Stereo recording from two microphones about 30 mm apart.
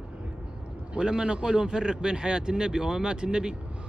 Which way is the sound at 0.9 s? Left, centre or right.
Right.